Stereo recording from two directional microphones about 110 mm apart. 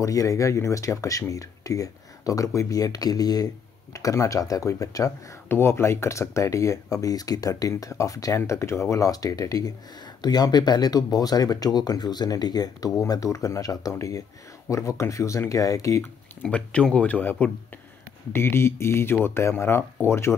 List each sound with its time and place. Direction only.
0.0 s speech: 30° left (ahead or behind)
16.4 s speech: 10° left (ahead or behind); by 20.3 s 25° left (ahead or behind)